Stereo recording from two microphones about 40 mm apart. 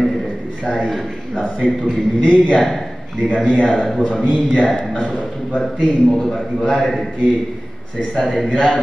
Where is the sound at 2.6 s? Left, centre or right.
Centre.